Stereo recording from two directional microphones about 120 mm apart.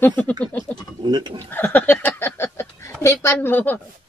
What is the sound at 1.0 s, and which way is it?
Speech, 35° right (ahead or behind).